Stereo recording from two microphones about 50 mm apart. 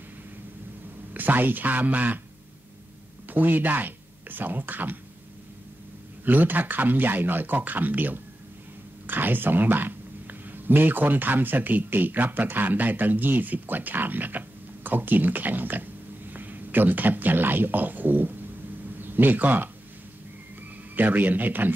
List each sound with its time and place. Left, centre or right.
1.1 s speech: right
3.3 s speech: right
6.2 s a man's voice: right
20.9 s speech: right